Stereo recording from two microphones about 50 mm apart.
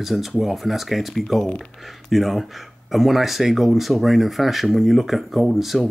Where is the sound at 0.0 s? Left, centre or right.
Centre.